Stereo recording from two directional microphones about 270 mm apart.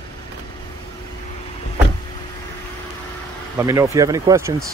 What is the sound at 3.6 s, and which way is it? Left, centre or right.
Speech, centre.